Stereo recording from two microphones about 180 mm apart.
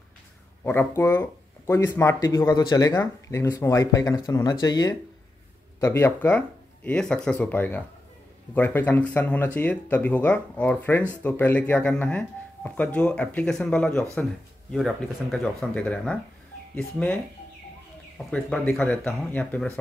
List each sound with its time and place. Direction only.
0.7 s speech: 15° left (ahead or behind)